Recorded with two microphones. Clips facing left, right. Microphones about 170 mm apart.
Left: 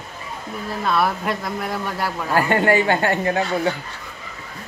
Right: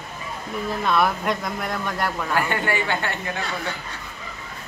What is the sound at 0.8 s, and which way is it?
Speech, 5° left (ahead or behind).